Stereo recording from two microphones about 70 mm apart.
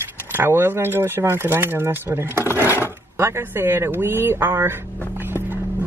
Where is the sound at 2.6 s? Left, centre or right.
Left.